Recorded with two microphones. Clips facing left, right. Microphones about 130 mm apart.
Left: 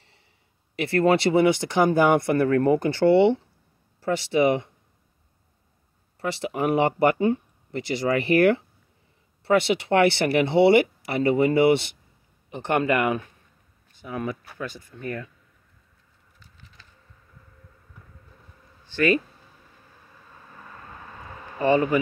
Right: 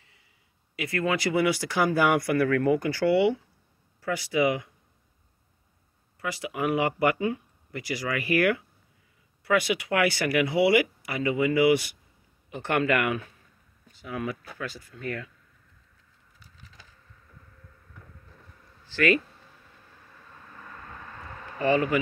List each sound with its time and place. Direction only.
0.7 s speech: 30° left (ahead or behind)
6.1 s speech: 30° left (ahead or behind)
14.7 s speech: 20° left (ahead or behind)
21.5 s speech: 25° left (ahead or behind)